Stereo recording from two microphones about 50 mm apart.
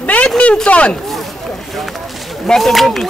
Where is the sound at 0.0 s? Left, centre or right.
Left.